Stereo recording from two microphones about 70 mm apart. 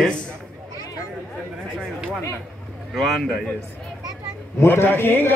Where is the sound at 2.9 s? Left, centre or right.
Centre.